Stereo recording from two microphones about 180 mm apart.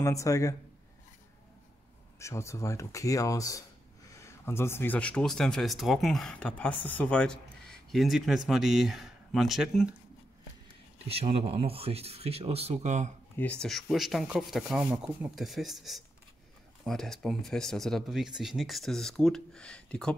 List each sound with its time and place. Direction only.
0.0 s speech: 20° left (ahead or behind)
2.1 s speech: 15° left (ahead or behind); by 9.9 s 5° right (ahead or behind)
11.1 s speech: 30° right (ahead or behind)
13.4 s speech: 5° left (ahead or behind)